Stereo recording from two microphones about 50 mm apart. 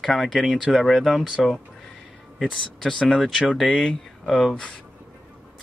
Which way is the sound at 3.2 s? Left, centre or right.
Centre.